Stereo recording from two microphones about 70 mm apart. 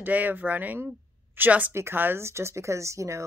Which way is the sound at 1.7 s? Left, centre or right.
Right.